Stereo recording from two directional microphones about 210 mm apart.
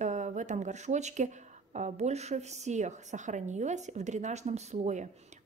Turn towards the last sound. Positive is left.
turn(degrees=-35)  # may be behind; listen again after turning